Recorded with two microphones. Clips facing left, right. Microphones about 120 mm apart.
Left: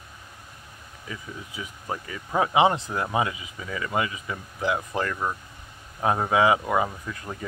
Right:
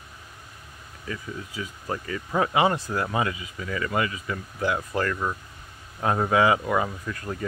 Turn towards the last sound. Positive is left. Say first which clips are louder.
# right 3 dB
turn(degrees=10)  # may be behind; listen again after turning